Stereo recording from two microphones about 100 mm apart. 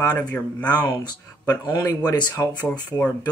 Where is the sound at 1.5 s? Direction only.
25° left (ahead or behind).